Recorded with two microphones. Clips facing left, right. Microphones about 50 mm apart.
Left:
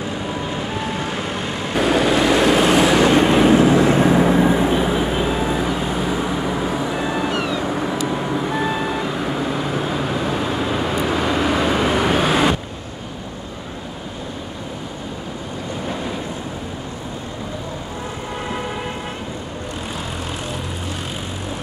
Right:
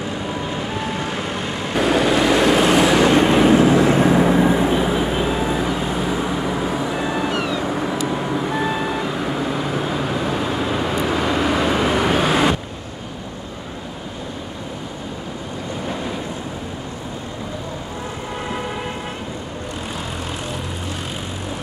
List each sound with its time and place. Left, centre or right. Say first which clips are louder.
0.0 s vehicle: even; centre